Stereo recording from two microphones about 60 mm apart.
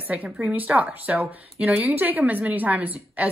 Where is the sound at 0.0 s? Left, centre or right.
Right.